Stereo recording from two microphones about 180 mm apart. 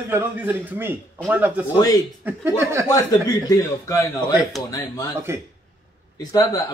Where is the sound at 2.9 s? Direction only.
20° left (ahead or behind).